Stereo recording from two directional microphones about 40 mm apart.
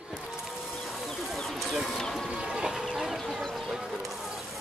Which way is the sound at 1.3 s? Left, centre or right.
Centre.